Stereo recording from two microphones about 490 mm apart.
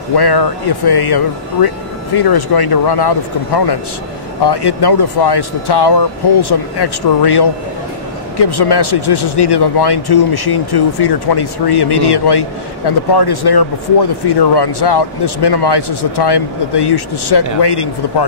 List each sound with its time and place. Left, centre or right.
0.1 s speech: left